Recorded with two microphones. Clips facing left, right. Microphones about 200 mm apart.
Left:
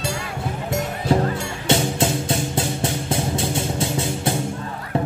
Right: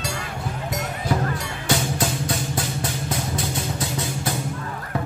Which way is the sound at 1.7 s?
25° left (ahead or behind).